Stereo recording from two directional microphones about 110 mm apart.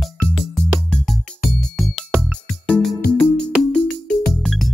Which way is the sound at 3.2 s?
10° left (ahead or behind).